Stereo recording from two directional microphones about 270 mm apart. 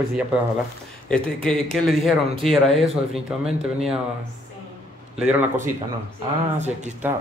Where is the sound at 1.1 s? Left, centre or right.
Centre.